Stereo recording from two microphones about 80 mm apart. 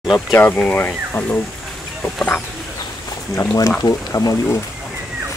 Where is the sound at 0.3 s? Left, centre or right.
Left.